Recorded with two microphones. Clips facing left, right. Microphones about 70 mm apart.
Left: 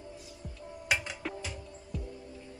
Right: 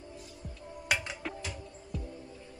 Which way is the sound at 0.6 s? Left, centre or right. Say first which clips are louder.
Even; centre.